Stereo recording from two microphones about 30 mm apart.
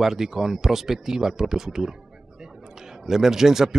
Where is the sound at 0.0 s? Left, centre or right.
Centre.